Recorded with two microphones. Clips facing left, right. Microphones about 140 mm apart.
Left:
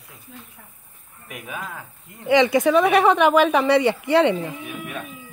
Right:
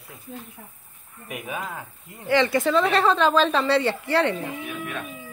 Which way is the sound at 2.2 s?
15° left (ahead or behind).